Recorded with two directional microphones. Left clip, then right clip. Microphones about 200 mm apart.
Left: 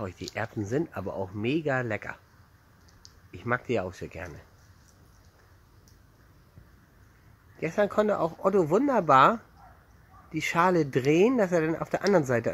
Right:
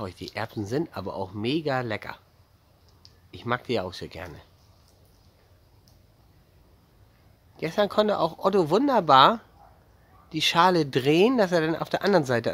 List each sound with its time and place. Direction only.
0.3 s speech: 15° right (ahead or behind)
3.3 s speech: 10° right (ahead or behind)
7.5 s speech: 15° right (ahead or behind)